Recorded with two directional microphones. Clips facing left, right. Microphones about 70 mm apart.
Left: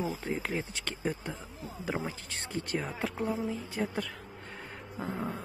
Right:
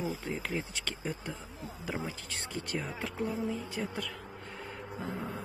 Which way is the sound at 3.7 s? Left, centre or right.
Left.